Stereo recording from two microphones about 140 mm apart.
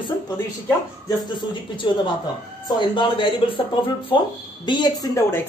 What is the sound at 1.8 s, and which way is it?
Speech, 35° left (ahead or behind).